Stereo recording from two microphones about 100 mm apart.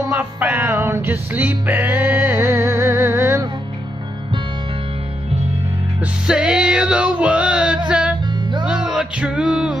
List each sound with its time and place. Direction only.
0.1 s music: 15° right (ahead or behind)
2.3 s music: 25° right (ahead or behind)
6.2 s male singing: 5° right (ahead or behind)
7.9 s music: 5° right (ahead or behind)